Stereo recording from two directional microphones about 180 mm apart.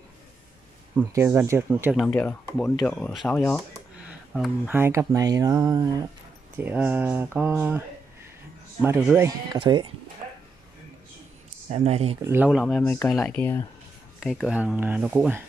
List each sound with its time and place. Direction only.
0.9 s speech: 15° right (ahead or behind)
2.0 s speech: 5° left (ahead or behind)
4.1 s a sound: 5° right (ahead or behind)
4.7 s speech: 15° right (ahead or behind)
6.6 s speech: 10° right (ahead or behind)
8.8 s speech: 10° right (ahead or behind)
9.6 s speech: 25° right (ahead or behind)
11.7 s speech: 35° right (ahead or behind)
12.3 s speech: 5° right (ahead or behind); by 13.6 s 10° left (ahead or behind)
14.2 s speech: centre (ahead or behind)